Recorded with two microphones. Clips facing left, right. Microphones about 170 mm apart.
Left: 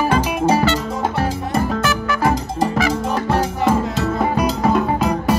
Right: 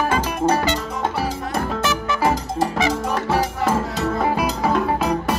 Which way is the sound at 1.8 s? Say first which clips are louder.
Left 2 dB; 25° right (ahead or behind).